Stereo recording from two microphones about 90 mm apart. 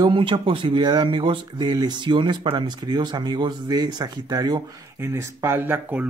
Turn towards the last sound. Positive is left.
turn(degrees=-20)  # may be behind; listen again after turning